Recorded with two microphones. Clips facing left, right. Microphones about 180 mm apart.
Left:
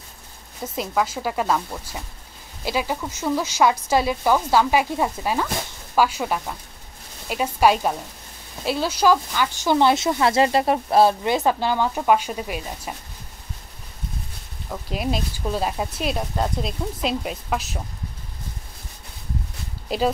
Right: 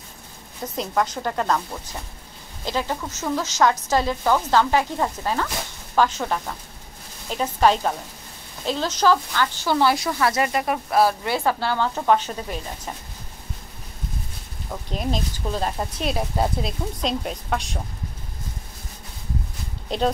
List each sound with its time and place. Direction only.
0.7 s speech: 5° left (ahead or behind)
14.7 s a woman's voice: 5° left (ahead or behind)
19.9 s a woman's voice: 5° left (ahead or behind)